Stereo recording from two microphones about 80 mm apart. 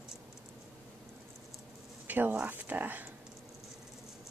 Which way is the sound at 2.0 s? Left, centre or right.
Right.